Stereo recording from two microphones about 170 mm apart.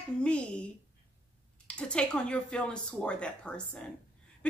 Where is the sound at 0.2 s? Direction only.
5° left (ahead or behind).